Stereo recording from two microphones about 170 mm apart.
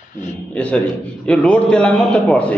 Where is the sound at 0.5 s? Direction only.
5° left (ahead or behind).